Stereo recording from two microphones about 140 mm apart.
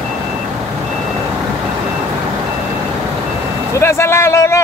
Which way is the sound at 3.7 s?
20° left (ahead or behind).